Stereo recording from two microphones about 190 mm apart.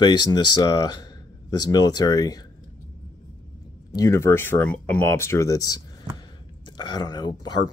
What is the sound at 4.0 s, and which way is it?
Speech, 15° left (ahead or behind).